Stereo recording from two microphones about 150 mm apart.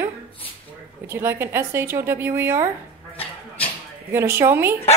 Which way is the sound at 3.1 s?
40° left (ahead or behind).